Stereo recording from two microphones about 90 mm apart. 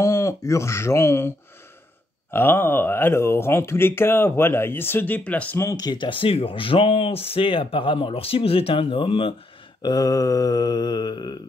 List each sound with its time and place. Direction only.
0.0 s speech: 35° left (ahead or behind)
2.3 s speech: 25° left (ahead or behind)
5.8 s mantra: 50° left (ahead or behind)
6.0 s speech: 70° left (ahead or behind)
9.8 s mantra: 50° left (ahead or behind)